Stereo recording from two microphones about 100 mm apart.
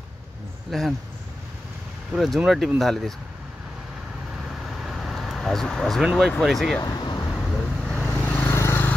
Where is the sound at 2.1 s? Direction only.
Centre (ahead or behind).